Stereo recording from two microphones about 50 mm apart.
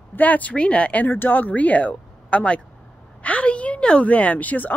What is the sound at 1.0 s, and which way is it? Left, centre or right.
A woman's voice, left.